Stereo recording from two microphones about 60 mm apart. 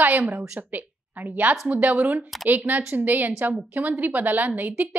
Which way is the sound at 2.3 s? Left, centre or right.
Centre.